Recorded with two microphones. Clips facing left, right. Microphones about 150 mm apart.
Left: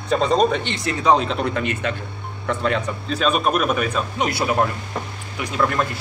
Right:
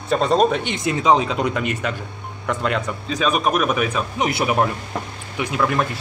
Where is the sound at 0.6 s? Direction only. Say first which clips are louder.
Right 1 dB; 20° right (ahead or behind).